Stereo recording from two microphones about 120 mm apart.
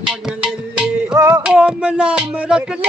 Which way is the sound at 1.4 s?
10° right (ahead or behind).